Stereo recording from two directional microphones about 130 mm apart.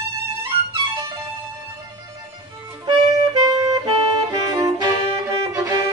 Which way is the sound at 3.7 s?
30° right (ahead or behind).